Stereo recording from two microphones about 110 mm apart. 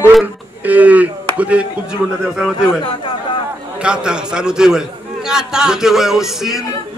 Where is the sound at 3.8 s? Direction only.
10° right (ahead or behind).